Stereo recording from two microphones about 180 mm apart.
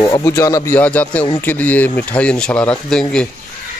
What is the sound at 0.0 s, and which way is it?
Speech, 20° left (ahead or behind).